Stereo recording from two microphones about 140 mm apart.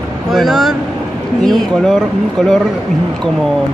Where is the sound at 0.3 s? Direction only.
Centre (ahead or behind).